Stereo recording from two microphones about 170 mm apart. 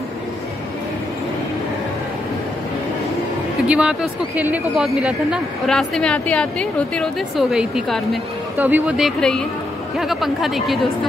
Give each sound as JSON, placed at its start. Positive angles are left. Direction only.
{"t": 3.6, "sound": "speech", "side_deg": -5}